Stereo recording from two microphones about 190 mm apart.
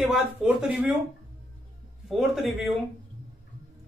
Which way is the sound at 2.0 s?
Centre (ahead or behind).